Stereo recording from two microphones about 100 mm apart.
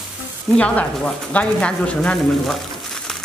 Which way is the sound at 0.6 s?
15° left (ahead or behind).